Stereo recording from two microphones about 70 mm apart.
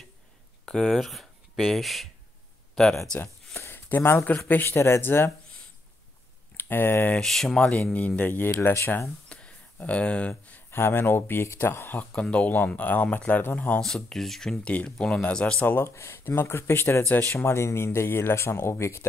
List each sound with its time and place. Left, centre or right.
0.7 s speech: centre
3.5 s speech: left
6.5 s speech: left
7.2 s speech: centre
8.2 s speech: left
9.3 s a sound: centre
10.7 s speech: left
12.1 s speech: centre
13.7 s speech: centre
14.6 s speech: centre
15.8 s speech: left